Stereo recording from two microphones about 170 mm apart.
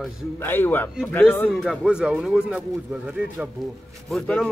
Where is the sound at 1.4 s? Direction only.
Centre (ahead or behind).